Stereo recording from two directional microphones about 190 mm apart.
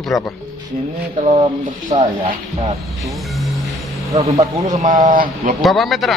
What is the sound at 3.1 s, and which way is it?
Music, centre (ahead or behind).